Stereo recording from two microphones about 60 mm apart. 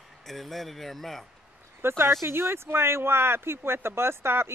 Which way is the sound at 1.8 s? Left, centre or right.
Right.